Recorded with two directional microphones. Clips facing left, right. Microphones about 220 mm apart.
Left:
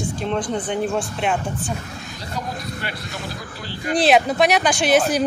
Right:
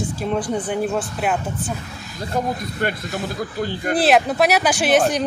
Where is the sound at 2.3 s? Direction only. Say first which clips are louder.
Right 6 dB; 50° right (ahead or behind).